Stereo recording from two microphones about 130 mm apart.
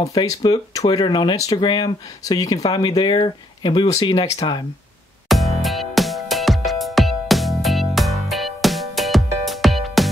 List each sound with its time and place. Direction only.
0.0 s speech: 30° left (ahead or behind)
1.6 s speech: 40° left (ahead or behind)
5.3 s music: centre (ahead or behind)